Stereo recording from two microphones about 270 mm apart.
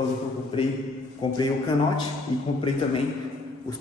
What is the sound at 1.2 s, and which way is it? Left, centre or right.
Speech, centre.